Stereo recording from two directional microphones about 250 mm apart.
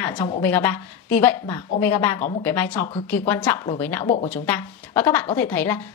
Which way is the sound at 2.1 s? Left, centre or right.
Left.